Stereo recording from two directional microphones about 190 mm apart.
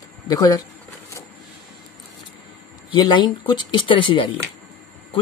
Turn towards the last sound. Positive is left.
turn(degrees=25)  # may be behind; listen again after turning